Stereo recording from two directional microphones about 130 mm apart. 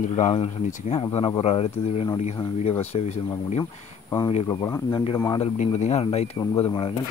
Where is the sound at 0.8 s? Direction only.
50° left (ahead or behind).